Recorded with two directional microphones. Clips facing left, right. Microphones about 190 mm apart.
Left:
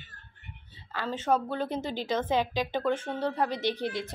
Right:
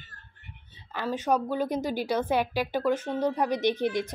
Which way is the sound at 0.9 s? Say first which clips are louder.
Right 1 dB; 15° right (ahead or behind).